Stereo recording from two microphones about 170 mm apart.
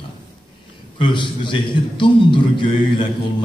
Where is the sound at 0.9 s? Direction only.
30° left (ahead or behind).